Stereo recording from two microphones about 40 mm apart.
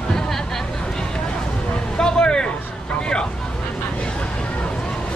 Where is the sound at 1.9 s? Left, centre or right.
Left.